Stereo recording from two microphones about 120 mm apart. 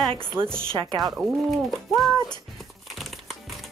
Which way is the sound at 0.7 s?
40° right (ahead or behind).